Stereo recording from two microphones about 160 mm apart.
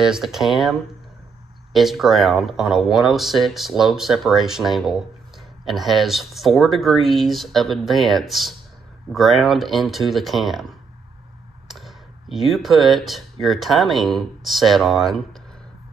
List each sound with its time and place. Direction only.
0.0 s speech: centre (ahead or behind)